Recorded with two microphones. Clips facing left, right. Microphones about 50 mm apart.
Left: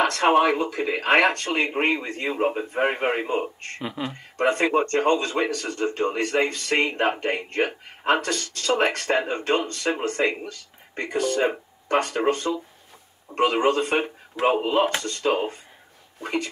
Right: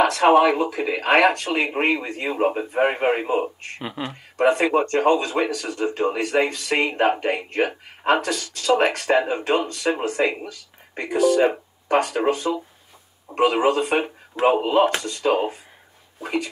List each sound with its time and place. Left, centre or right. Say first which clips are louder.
0.0 s speech: right 3 dB; centre
3.8 s speech: even; right
4.1 s speech: right 5 dB; centre